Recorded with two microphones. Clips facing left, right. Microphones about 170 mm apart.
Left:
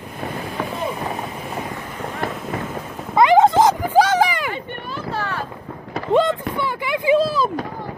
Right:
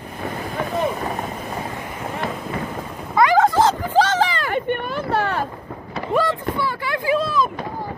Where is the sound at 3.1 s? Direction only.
20° left (ahead or behind).